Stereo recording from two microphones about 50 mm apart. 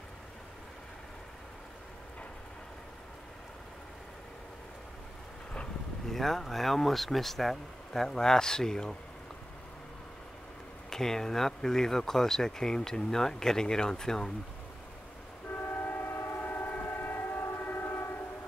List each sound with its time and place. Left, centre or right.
6.1 s speech: centre
10.9 s speech: centre
15.4 s train: left
16.2 s train: left
17.5 s train: left